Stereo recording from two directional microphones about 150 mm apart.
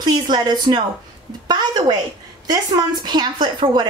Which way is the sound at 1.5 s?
25° right (ahead or behind).